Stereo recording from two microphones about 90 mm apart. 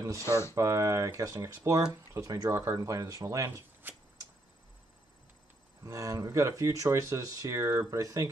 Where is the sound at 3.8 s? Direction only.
25° right (ahead or behind).